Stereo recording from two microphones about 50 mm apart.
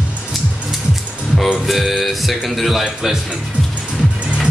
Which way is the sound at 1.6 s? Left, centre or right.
Centre.